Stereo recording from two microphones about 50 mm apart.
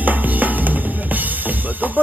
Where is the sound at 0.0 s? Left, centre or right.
Right.